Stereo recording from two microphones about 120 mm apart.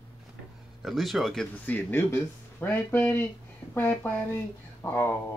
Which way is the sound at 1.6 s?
15° left (ahead or behind).